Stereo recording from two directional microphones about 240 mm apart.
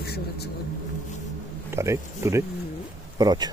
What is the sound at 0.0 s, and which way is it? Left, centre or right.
Vehicle, left.